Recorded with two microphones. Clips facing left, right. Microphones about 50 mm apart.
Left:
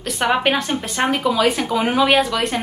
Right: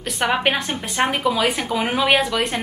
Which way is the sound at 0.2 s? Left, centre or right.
Centre.